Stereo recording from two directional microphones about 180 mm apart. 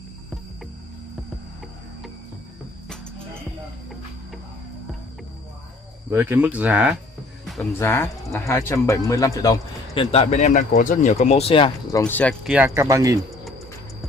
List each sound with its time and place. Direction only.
6.0 s speech: 10° right (ahead or behind)
7.8 s speech: 15° left (ahead or behind)
10.1 s speech: 40° left (ahead or behind)
12.1 s speech: 10° left (ahead or behind)
12.4 s speech: 10° right (ahead or behind)